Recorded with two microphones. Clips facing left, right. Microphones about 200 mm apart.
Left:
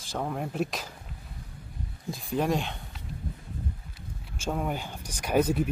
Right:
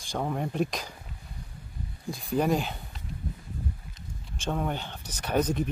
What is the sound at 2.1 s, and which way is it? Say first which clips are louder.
Speech: right 2 dB; centre (ahead or behind).